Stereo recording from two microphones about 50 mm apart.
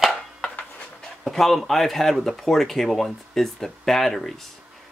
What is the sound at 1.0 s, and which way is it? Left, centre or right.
Speech, centre.